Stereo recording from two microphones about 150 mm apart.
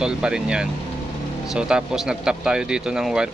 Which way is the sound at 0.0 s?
5° right (ahead or behind).